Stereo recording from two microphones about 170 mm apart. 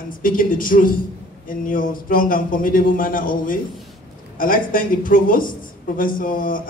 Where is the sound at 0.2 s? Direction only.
55° left (ahead or behind).